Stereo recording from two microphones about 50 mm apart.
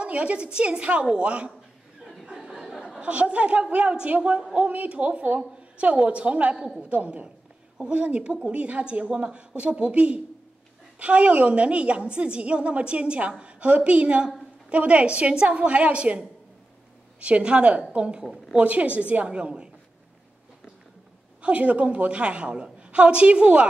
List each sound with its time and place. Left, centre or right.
0.0 s a woman's voice: right
2.2 s a sound: centre
3.0 s a woman's voice: right
21.4 s a woman's voice: right